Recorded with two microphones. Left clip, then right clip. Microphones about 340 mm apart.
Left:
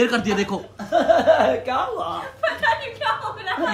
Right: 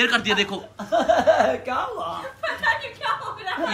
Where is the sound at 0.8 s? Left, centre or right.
Centre.